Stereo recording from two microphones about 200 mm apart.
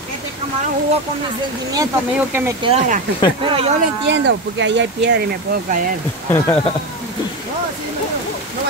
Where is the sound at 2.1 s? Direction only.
10° right (ahead or behind).